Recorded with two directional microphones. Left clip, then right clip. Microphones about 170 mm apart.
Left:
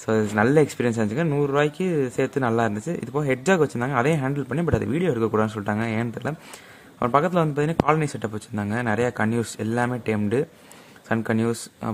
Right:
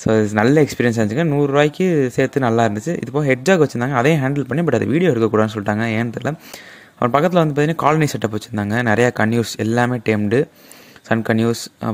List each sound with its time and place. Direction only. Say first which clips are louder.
0.0 s speech: right 5 dB; 30° right (ahead or behind)